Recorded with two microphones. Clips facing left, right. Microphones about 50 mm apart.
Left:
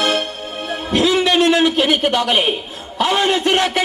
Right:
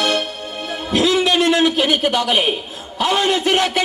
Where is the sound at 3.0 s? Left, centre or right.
Centre.